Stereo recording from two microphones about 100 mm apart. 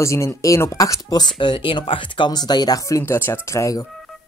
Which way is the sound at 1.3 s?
55° left (ahead or behind).